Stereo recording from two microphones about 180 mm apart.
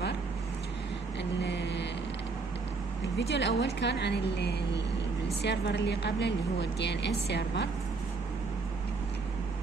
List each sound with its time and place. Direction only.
1.4 s mantra: 75° left (ahead or behind)
3.2 s a woman's voice: 75° left (ahead or behind)